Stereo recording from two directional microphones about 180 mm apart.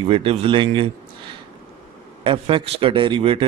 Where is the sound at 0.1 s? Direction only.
30° right (ahead or behind).